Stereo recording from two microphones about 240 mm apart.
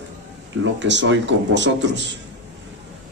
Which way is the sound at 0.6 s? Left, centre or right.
Right.